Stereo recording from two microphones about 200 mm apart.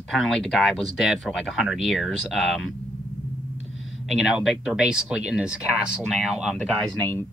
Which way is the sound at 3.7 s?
70° left (ahead or behind).